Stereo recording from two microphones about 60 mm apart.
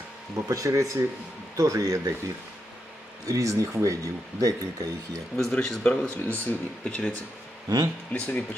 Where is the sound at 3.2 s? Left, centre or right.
Right.